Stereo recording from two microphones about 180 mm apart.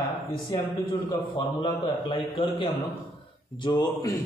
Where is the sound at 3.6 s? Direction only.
25° left (ahead or behind).